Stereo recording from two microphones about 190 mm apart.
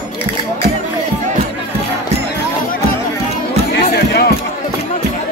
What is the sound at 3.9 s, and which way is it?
Music, 60° left (ahead or behind).